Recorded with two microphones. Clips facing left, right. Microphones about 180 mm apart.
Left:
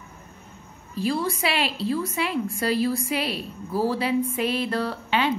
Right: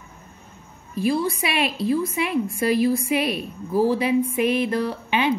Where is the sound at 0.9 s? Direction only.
15° right (ahead or behind).